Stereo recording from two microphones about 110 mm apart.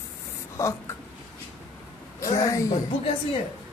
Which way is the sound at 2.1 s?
30° left (ahead or behind).